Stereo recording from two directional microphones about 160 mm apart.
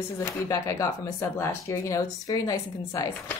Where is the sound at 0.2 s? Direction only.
20° left (ahead or behind).